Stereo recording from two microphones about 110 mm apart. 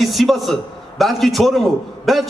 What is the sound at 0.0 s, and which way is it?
A man's voice, centre (ahead or behind).